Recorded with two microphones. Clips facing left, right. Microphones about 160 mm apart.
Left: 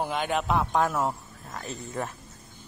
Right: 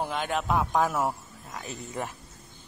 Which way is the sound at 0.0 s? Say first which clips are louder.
Left 2 dB; centre (ahead or behind).